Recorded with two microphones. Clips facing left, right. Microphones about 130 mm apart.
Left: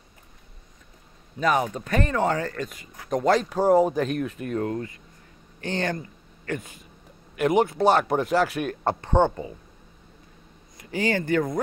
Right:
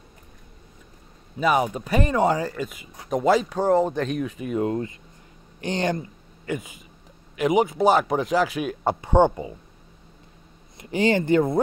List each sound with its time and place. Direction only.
1.4 s speech: 10° right (ahead or behind)
4.6 s speech: 25° right (ahead or behind)
10.8 s speech: 20° right (ahead or behind)